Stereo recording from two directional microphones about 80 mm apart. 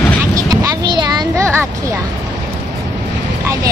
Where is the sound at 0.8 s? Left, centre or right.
Right.